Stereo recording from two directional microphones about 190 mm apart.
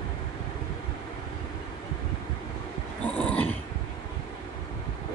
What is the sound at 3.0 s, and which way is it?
Dog, 5° left (ahead or behind).